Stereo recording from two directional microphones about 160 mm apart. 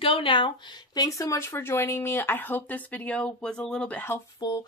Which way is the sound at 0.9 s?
20° left (ahead or behind).